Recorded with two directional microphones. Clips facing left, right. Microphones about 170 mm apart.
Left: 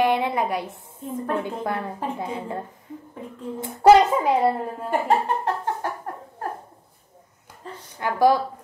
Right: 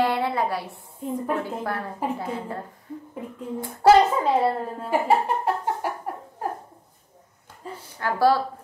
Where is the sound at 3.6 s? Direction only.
15° left (ahead or behind).